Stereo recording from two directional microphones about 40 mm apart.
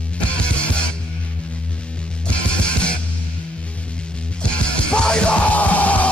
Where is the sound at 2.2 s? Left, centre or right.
Left.